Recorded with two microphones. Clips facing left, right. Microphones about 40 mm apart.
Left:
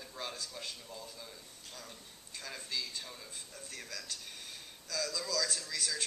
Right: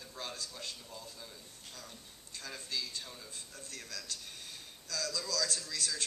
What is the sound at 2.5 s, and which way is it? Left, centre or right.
Speech, centre.